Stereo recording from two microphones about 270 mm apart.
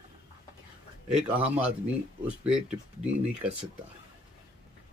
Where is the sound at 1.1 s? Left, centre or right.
Centre.